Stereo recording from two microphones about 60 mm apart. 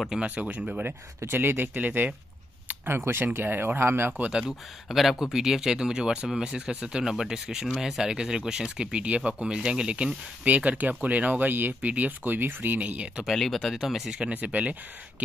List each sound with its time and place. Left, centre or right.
0.2 s speech: right
0.8 s speech: right
2.7 s a sound: right
3.3 s speech: right
4.5 s speech: centre
13.2 s speech: centre
14.3 s speech: right